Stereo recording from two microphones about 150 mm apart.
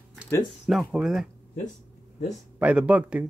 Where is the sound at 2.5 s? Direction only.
10° right (ahead or behind).